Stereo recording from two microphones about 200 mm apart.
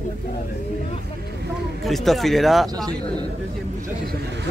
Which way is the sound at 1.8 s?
Centre (ahead or behind).